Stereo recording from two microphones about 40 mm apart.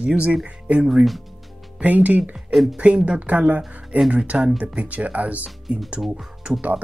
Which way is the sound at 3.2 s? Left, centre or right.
Right.